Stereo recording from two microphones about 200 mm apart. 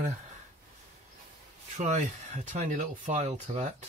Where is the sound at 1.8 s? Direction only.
35° right (ahead or behind).